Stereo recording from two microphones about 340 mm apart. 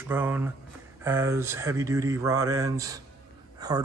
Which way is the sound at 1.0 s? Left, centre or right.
Centre.